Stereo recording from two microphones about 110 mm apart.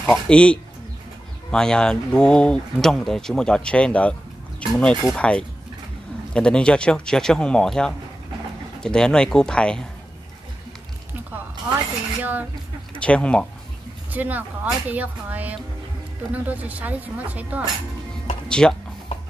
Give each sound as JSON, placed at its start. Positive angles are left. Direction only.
{"t": 0.1, "sound": "speech", "side_deg": 10}
{"t": 12.2, "sound": "speech", "side_deg": -15}
{"t": 13.0, "sound": "speech", "side_deg": 10}
{"t": 14.1, "sound": "speech", "side_deg": -15}
{"t": 18.5, "sound": "speech", "side_deg": 5}